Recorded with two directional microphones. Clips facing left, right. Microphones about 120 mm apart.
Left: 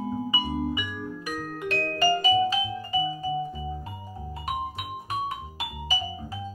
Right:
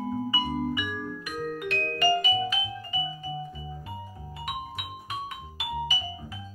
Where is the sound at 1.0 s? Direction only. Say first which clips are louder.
Right 1 dB; 35° left (ahead or behind).